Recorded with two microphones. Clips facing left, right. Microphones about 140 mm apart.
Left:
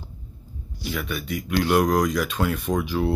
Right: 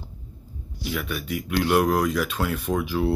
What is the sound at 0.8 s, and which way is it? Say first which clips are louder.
Speech: even; 5° right (ahead or behind).